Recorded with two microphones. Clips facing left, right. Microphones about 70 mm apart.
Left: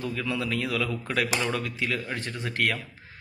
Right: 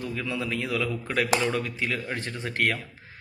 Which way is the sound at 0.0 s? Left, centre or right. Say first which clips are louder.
Left 1 dB; right.